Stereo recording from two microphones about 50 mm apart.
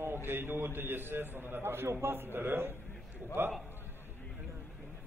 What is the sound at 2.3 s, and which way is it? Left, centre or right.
A man's voice, right.